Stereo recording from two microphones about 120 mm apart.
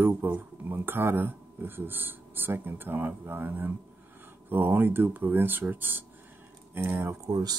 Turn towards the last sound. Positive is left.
turn(degrees=-35)  # may be behind; listen again after turning